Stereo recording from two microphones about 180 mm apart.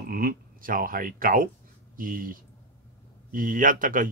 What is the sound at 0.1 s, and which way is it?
Speech, 55° right (ahead or behind).